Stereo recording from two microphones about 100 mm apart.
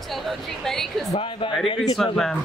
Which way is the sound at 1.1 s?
65° left (ahead or behind).